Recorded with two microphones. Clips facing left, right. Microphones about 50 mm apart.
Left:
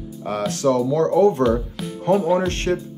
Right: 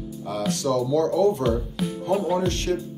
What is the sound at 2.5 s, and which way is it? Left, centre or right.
Speech, left.